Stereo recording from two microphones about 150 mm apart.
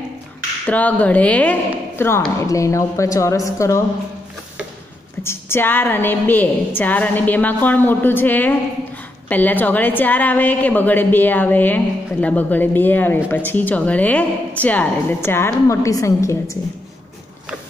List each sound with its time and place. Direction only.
0.7 s a woman's voice: 10° left (ahead or behind)
5.2 s a woman's voice: 15° left (ahead or behind)